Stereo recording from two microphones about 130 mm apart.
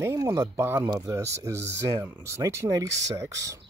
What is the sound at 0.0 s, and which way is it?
Speech, 25° right (ahead or behind).